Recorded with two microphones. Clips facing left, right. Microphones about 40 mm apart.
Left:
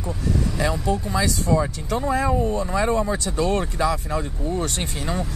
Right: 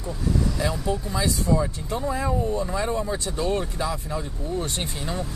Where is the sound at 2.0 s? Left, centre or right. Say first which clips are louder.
Left 4 dB; left.